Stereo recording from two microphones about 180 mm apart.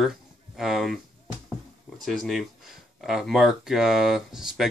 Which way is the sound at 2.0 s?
Centre (ahead or behind).